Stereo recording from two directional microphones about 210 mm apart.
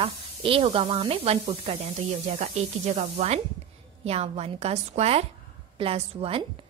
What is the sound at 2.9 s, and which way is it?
A woman's voice, 30° right (ahead or behind).